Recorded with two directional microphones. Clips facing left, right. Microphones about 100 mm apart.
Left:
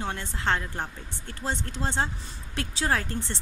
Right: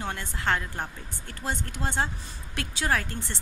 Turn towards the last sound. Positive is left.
turn(degrees=25)  # may be behind; listen again after turning